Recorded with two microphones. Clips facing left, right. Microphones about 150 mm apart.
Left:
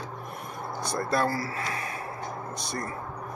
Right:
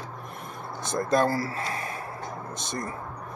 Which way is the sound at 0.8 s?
20° right (ahead or behind).